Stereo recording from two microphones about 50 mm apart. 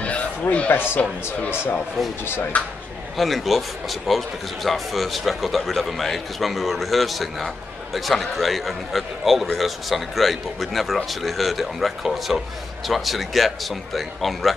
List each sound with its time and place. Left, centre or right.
0.0 s a sound: left
1.0 s speech: left
2.0 s a man's voice: centre
2.5 s speech: left
3.2 s a man's voice: centre